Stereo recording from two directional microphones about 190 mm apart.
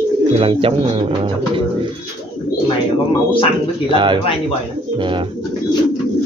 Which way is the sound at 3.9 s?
25° right (ahead or behind).